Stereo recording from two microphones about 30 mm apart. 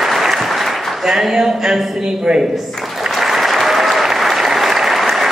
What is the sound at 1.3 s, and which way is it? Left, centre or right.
Speech, right.